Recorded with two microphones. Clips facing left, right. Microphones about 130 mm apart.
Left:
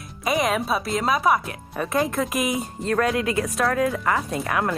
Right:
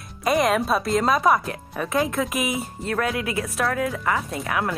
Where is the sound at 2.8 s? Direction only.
30° left (ahead or behind).